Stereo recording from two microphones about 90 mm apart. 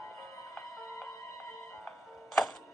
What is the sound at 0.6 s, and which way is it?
Music, 5° left (ahead or behind).